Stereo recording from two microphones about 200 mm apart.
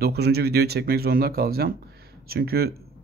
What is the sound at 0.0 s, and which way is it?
Speech, 55° right (ahead or behind).